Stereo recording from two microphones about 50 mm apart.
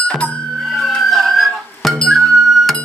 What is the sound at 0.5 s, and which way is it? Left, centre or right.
Music, centre.